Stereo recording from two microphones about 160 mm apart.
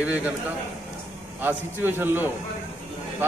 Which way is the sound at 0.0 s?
10° right (ahead or behind).